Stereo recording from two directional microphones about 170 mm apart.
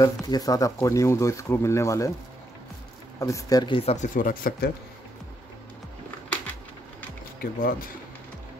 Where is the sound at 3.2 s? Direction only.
20° left (ahead or behind); by 4.6 s 60° left (ahead or behind).